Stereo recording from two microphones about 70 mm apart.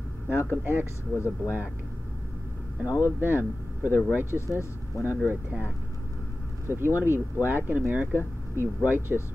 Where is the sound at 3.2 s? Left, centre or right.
Right.